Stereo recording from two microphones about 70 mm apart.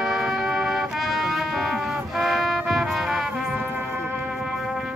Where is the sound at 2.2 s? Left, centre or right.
Centre.